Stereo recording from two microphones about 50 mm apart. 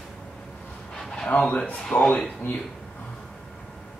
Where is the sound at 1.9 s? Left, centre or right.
Left.